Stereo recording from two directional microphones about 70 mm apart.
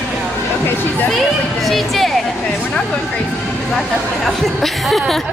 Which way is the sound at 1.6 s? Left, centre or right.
Centre.